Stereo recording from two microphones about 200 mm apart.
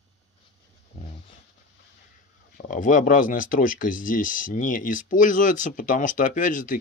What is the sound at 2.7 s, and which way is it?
Speech, 40° left (ahead or behind).